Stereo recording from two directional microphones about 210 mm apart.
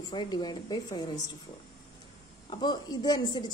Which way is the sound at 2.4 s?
20° left (ahead or behind).